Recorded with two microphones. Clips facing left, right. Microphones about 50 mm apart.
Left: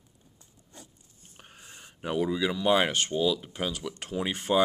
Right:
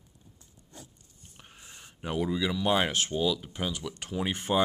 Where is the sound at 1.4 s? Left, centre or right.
Centre.